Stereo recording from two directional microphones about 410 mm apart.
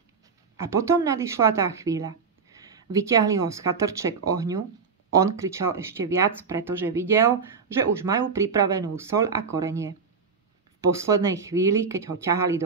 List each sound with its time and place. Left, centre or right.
0.6 s speech: centre
11.0 s speech: centre